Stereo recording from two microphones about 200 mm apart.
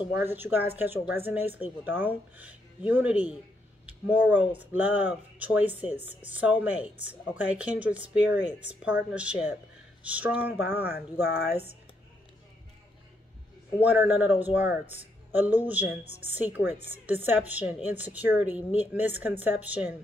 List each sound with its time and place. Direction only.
0.2 s speech: 10° right (ahead or behind)
10.8 s speech: 50° left (ahead or behind)
13.8 s speech: 10° right (ahead or behind)